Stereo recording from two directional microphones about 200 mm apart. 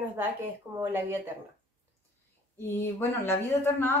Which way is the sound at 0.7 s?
10° right (ahead or behind).